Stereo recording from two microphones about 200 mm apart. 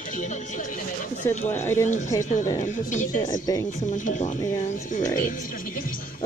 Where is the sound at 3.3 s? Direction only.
15° left (ahead or behind).